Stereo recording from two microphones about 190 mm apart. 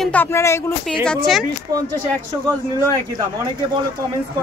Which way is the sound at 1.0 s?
Centre (ahead or behind).